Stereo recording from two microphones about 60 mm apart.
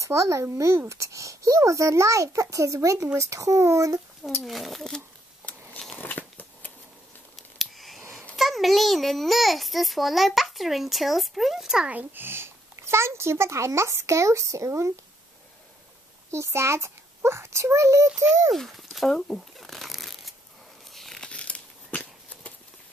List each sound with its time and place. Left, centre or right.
0.0 s a child's voice: right
4.5 s a child's voice: centre
5.9 s biting: left
7.3 s scissors: centre
8.0 s a sound: right
8.4 s a child's voice: centre
11.9 s a child's voice: right
16.3 s a child's voice: right
18.5 s speech: centre
19.5 s a sound: centre
21.3 s crumpling: centre